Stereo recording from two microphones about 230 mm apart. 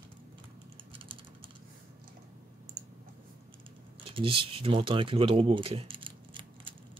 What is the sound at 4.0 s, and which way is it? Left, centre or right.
Speech, right.